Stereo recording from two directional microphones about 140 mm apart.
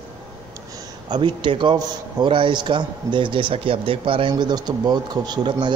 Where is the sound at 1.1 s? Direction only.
35° right (ahead or behind).